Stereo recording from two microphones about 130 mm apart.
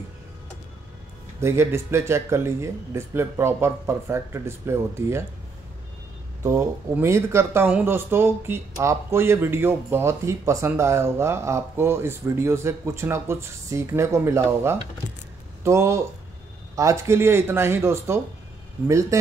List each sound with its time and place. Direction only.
1.4 s speech: 20° right (ahead or behind)
6.4 s speech: 20° right (ahead or behind)